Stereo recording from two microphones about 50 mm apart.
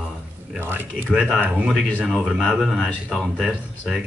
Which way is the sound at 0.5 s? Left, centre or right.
Right.